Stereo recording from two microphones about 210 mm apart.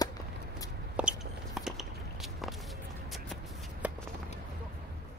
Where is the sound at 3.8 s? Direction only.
5° right (ahead or behind).